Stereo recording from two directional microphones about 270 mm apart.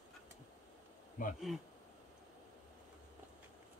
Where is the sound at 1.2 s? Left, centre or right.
Left.